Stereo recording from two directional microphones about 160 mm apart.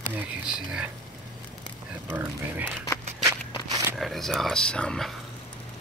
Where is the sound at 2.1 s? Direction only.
10° right (ahead or behind).